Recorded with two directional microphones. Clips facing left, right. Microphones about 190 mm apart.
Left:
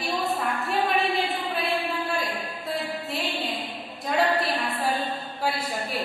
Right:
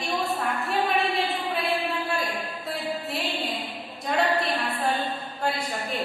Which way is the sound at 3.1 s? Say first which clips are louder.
Even; centre (ahead or behind).